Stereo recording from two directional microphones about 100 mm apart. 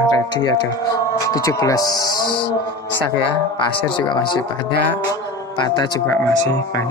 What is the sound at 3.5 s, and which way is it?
Speech, 55° left (ahead or behind).